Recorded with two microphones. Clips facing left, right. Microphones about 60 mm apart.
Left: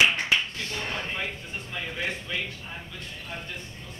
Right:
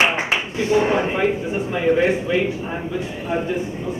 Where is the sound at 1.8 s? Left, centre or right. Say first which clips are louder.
Right 17 dB; right.